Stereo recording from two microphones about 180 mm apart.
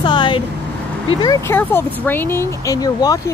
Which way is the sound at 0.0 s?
25° left (ahead or behind).